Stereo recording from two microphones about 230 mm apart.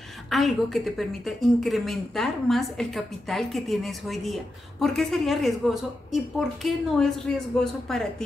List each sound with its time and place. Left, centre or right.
0.3 s speech: centre